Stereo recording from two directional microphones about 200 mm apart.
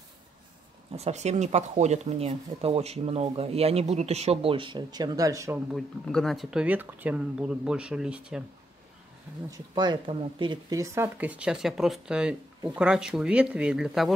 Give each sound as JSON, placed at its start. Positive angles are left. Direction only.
{"t": 0.9, "sound": "speech", "side_deg": -35}
{"t": 5.7, "sound": "speech", "side_deg": 0}
{"t": 9.5, "sound": "speech", "side_deg": -20}